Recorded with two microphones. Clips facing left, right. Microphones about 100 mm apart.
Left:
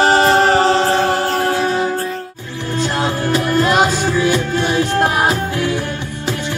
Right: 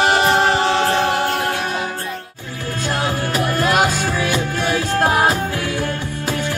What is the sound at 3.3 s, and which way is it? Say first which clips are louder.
Music: left 4 dB; 25° left (ahead or behind).